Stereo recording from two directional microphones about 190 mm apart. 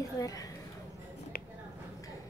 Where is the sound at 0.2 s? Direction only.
20° left (ahead or behind).